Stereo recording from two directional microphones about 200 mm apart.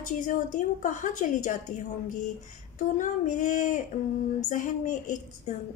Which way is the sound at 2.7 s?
40° left (ahead or behind).